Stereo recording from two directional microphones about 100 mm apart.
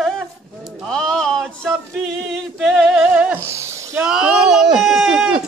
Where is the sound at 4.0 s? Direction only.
10° right (ahead or behind).